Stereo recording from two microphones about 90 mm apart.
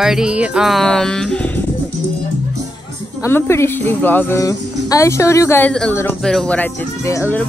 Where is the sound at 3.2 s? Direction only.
30° left (ahead or behind).